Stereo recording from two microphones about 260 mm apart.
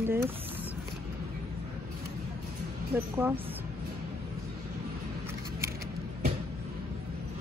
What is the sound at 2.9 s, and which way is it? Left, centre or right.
Speech, centre.